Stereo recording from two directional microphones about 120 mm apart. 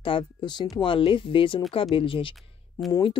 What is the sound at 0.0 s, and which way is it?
Speech, 45° left (ahead or behind).